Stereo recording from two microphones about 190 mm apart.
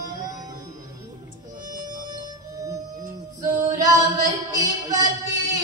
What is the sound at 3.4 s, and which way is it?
Female singing, 20° right (ahead or behind).